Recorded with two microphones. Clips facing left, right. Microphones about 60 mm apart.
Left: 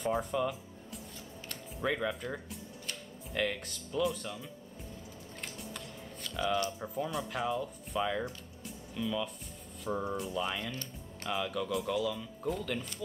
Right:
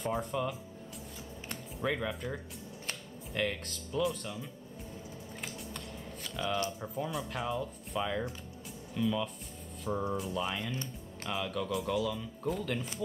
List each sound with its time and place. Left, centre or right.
0.0 s speech: centre
5.4 s typing: centre
6.4 s speech: centre
8.3 s music: centre
9.8 s speech: centre